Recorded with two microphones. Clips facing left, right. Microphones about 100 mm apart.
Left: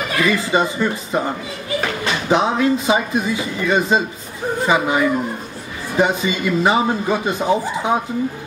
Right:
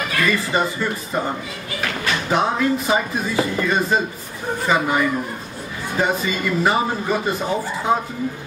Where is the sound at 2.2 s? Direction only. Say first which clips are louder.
Left 3 dB; 20° left (ahead or behind).